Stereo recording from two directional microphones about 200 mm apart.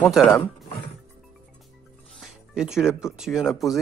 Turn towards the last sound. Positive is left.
turn(degrees=0)  # may be behind; listen again after turning